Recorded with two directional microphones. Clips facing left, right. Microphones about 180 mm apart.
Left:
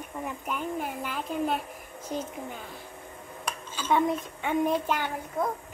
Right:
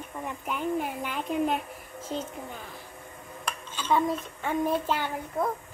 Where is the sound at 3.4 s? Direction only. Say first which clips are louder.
Left 1 dB; 5° left (ahead or behind).